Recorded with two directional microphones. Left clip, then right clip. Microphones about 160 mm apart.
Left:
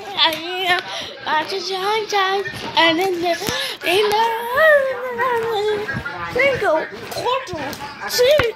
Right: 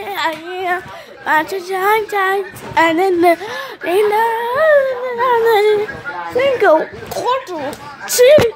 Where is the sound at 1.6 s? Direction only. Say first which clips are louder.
Right 6 dB; 40° right (ahead or behind).